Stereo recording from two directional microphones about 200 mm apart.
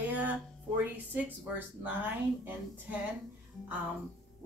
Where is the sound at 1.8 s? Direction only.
10° right (ahead or behind).